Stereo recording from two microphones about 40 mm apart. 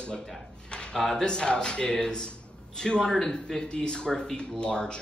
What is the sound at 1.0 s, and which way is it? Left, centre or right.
Speech, centre.